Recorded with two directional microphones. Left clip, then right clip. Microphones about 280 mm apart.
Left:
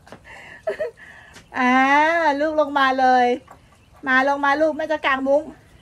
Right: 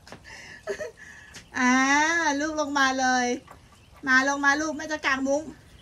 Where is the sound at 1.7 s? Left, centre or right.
Centre.